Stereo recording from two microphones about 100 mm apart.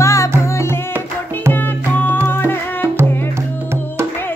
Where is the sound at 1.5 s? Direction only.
20° left (ahead or behind).